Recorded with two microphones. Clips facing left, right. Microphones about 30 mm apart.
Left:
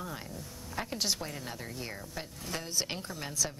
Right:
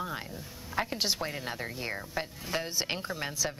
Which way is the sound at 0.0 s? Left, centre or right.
Right.